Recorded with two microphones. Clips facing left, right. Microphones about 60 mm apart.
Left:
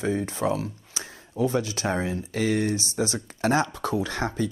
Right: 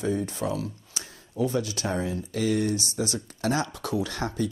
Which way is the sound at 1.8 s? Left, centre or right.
Left.